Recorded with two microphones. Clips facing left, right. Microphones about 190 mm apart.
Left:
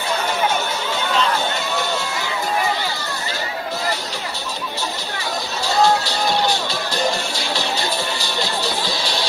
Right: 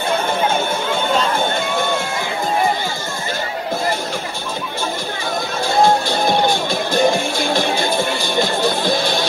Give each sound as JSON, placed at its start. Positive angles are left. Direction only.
{"t": 1.1, "sound": "run", "side_deg": -50}
{"t": 5.7, "sound": "music", "side_deg": -50}